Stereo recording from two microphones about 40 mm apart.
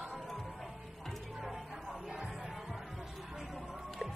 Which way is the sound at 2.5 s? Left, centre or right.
Centre.